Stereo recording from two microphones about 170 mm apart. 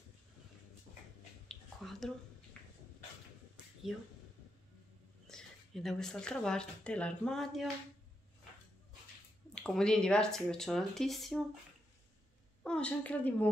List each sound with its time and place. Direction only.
1.5 s finger snapping: centre (ahead or behind)
5.3 s speech: 5° left (ahead or behind)
9.6 s speech: 5° left (ahead or behind)
12.6 s a woman's voice: 5° left (ahead or behind)